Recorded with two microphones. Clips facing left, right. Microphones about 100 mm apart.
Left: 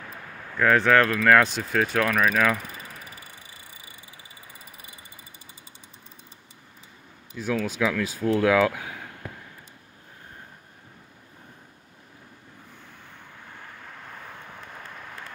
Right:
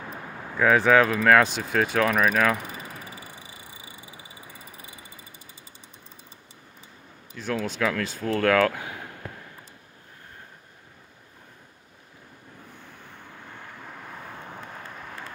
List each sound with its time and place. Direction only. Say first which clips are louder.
0.0 s a sound: right 3 dB; 20° right (ahead or behind)
0.6 s speech: right 1 dB; 5° right (ahead or behind)
2.5 s vehicle: right 1 dB; 20° right (ahead or behind)
7.3 s speech: left 2 dB; 5° left (ahead or behind)